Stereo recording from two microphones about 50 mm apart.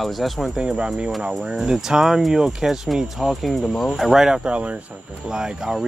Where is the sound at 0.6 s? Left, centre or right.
Centre.